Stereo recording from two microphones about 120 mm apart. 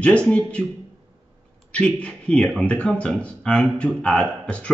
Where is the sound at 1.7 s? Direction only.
10° left (ahead or behind).